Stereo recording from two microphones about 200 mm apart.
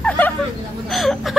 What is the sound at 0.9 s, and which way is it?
Frog, centre (ahead or behind).